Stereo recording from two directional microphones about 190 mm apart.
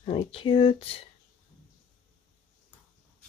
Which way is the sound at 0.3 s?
30° left (ahead or behind).